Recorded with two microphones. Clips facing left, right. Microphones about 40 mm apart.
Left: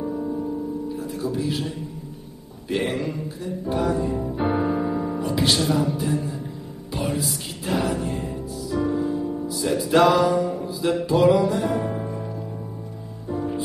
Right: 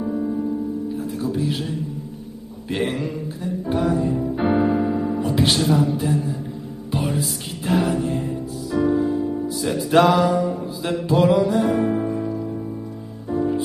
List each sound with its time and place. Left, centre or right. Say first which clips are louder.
0.0 s music: right 3 dB; centre
2.7 s mantra: right 1 dB; centre
3.7 s music: right 2 dB; centre
4.4 s piano: right 4 dB; centre
5.2 s music: right 1 dB; right
5.6 s mantra: right 3 dB; centre
7.6 s mantra: right 4 dB; centre
8.0 s music: right 4 dB; centre
10.3 s mantra: right 1 dB; centre
11.5 s music: right 5 dB; centre